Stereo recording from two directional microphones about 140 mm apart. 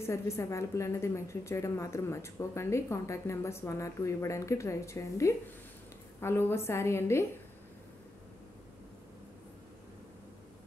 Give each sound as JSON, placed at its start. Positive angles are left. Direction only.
{"t": 0.0, "sound": "a woman's voice", "side_deg": 20}